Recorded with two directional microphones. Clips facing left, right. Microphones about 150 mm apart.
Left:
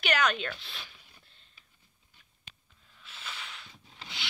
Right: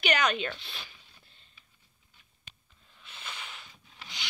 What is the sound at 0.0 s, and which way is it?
Speech, centre (ahead or behind).